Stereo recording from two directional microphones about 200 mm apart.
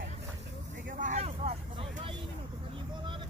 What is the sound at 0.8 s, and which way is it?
Speech, 40° right (ahead or behind).